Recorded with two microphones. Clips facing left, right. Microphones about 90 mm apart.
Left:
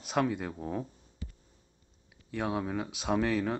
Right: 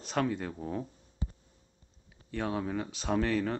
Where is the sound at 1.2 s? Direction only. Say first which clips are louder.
Right 5 dB; 25° right (ahead or behind).